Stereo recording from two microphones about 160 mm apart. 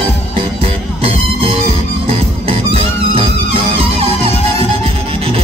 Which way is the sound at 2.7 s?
35° right (ahead or behind).